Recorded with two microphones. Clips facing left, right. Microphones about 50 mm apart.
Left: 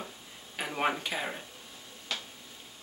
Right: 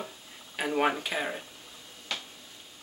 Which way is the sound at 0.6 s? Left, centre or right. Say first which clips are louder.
Right 4 dB; centre.